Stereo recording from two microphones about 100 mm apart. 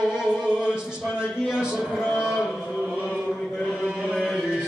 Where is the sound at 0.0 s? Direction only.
5° right (ahead or behind).